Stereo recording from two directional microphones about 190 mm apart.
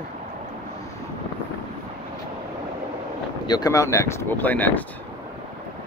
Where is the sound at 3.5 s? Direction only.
20° left (ahead or behind).